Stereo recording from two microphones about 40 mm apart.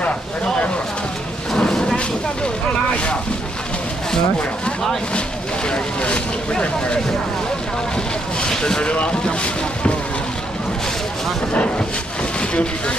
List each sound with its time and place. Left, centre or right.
1.6 s a sound: centre
5.7 s speech: left
8.4 s speech: centre
12.4 s speech: left